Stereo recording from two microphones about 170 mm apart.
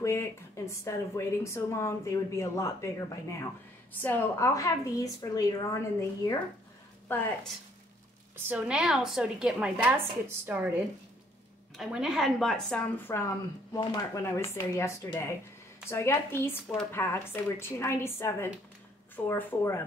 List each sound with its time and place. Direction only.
0.0 s a woman's voice: 15° left (ahead or behind)
8.4 s a woman's voice: 10° right (ahead or behind); by 19.8 s 15° left (ahead or behind)